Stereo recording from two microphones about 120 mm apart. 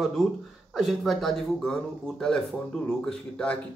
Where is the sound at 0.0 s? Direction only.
Centre (ahead or behind).